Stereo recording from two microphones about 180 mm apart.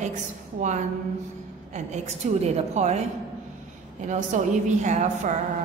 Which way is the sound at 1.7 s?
40° right (ahead or behind).